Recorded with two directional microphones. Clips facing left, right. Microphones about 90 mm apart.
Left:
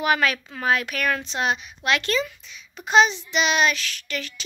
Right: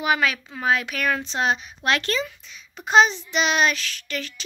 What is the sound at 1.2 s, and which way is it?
Speech, 35° right (ahead or behind).